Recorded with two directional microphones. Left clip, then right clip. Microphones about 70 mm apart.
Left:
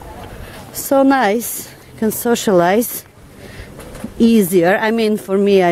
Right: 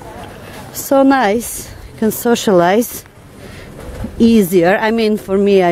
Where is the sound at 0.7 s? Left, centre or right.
Centre.